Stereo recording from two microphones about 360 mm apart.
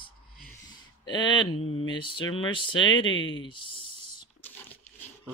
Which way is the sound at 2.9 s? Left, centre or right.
Left.